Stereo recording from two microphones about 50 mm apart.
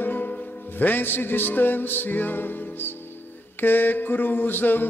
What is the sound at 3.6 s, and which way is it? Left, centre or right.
Mantra, left.